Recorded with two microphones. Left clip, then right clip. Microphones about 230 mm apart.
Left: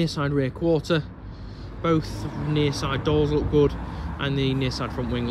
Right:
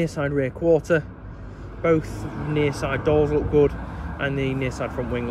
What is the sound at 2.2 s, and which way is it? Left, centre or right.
Speech, left.